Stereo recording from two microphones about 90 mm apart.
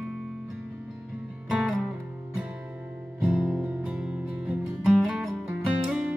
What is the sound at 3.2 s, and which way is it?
Music, 10° right (ahead or behind).